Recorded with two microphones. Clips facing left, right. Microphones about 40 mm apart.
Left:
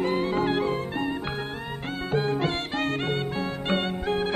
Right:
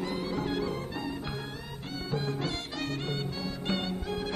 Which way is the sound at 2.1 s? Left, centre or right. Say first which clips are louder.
Left 8 dB; left.